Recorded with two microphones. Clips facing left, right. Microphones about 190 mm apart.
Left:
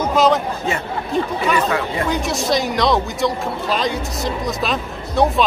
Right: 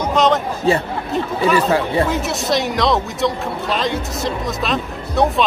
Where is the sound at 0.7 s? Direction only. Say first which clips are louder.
Right 8 dB; 35° right (ahead or behind).